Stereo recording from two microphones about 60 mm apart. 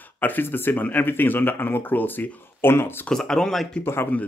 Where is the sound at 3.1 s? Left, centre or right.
Centre.